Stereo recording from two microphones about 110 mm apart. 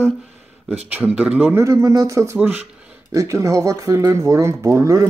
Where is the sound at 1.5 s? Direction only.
25° right (ahead or behind).